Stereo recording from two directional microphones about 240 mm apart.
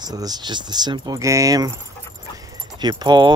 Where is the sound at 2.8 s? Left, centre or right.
Centre.